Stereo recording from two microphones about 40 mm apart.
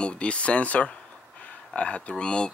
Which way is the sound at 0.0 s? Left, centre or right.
Left.